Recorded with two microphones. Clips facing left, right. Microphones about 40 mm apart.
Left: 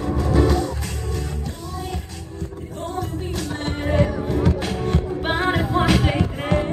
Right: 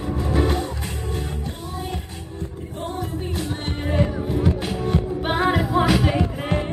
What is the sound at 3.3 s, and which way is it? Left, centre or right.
Music, left.